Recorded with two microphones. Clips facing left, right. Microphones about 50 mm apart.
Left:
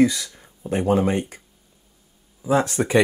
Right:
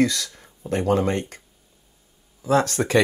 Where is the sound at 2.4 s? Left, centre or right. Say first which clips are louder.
Even; centre.